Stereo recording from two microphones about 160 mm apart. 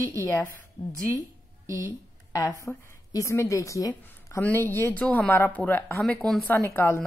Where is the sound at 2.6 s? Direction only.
20° left (ahead or behind).